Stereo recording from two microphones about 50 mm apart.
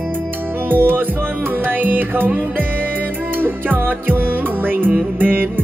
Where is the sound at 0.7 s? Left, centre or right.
Right.